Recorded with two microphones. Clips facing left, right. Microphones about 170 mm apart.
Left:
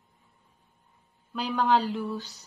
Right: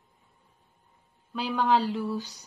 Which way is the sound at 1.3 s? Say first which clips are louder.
Even; centre (ahead or behind).